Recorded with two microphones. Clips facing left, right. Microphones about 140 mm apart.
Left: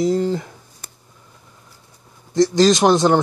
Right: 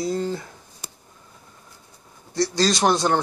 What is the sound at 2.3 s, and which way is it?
Speech, 20° left (ahead or behind).